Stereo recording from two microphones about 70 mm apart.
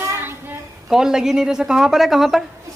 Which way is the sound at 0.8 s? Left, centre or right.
Centre.